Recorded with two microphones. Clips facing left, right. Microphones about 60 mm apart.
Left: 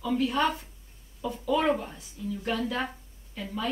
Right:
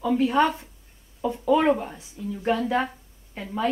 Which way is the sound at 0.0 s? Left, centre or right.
Right.